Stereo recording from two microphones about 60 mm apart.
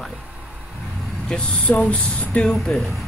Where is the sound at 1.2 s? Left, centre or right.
Centre.